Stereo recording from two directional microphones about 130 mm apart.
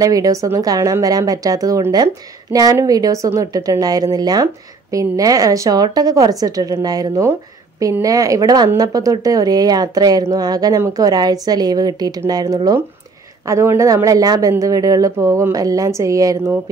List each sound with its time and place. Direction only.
0.0 s a woman's voice: 25° right (ahead or behind)